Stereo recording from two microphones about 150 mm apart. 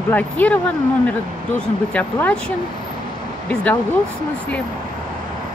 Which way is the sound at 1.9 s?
10° left (ahead or behind).